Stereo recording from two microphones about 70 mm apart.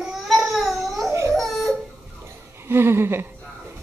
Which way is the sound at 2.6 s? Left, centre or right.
Right.